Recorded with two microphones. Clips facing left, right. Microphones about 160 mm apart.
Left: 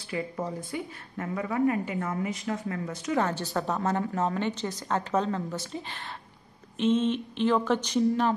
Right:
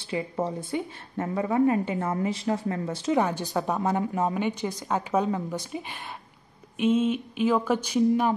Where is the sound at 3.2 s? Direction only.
15° right (ahead or behind).